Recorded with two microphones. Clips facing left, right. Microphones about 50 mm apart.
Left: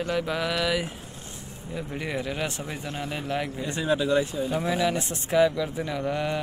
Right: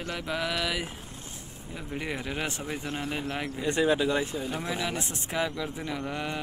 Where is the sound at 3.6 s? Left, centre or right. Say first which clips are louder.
Right 3 dB; right.